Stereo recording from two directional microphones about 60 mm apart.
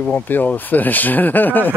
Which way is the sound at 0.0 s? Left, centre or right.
Left.